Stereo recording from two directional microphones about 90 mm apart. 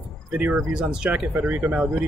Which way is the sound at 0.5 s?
5° right (ahead or behind).